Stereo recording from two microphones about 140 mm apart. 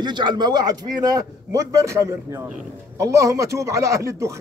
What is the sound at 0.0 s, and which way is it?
Speech, 30° right (ahead or behind).